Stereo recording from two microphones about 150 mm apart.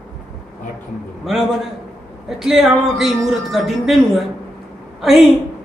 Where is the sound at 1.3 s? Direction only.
Centre (ahead or behind).